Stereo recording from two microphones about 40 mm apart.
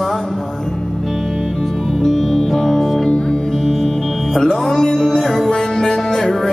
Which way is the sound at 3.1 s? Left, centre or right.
Left.